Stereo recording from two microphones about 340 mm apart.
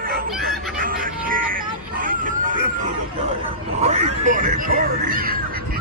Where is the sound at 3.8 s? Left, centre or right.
Centre.